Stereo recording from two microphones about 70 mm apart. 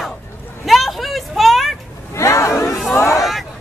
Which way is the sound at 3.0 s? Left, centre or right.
Left.